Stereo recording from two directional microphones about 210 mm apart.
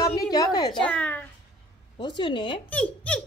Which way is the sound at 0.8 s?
5° left (ahead or behind).